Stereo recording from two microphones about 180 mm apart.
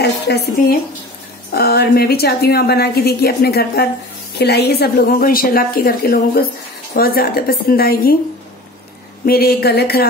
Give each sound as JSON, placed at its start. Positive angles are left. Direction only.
{"t": 0.0, "sound": "a woman's voice", "side_deg": 65}
{"t": 9.2, "sound": "a woman's voice", "side_deg": 60}